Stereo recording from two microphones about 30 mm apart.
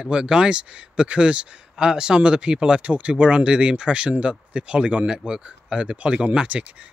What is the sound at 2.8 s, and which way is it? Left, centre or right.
Speech, right.